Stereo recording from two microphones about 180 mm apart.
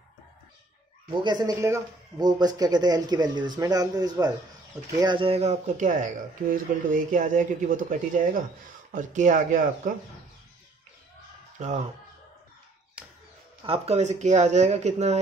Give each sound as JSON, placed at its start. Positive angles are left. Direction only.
{"t": 1.1, "sound": "speech", "side_deg": -25}
{"t": 11.5, "sound": "speech", "side_deg": -40}
{"t": 13.0, "sound": "a sound", "side_deg": -5}
{"t": 13.7, "sound": "speech", "side_deg": -35}